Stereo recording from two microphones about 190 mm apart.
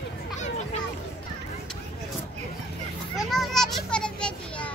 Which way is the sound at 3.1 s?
Centre (ahead or behind).